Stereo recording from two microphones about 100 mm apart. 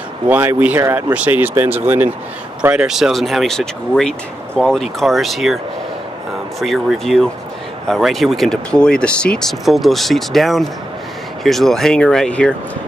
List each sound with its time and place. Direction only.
0.3 s speech: 20° right (ahead or behind)
0.7 s speech: 30° right (ahead or behind)
1.1 s speech: 15° right (ahead or behind)
2.6 s speech: 10° right (ahead or behind)
6.6 s speech: centre (ahead or behind)